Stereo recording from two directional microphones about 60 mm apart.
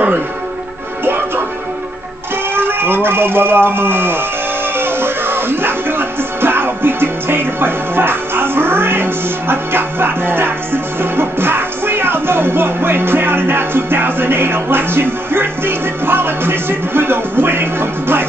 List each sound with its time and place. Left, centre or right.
1.0 s music: right
2.5 s speech: right
4.7 s music: right